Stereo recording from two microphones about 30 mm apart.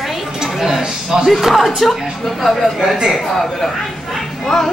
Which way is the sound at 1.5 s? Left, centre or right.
Centre.